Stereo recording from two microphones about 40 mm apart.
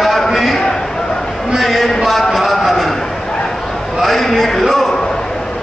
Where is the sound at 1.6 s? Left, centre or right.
Centre.